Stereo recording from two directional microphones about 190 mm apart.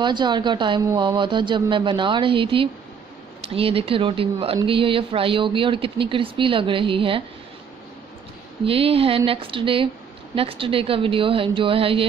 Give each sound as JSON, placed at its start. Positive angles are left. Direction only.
{"t": 0.0, "sound": "speech", "side_deg": -25}
{"t": 8.6, "sound": "speech", "side_deg": -30}